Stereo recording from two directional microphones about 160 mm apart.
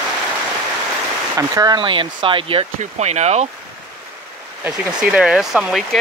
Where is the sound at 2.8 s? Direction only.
45° right (ahead or behind).